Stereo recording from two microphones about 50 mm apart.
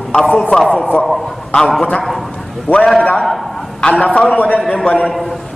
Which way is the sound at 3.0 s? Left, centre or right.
Left.